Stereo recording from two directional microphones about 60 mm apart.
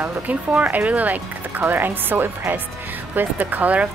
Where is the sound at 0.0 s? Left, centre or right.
Right.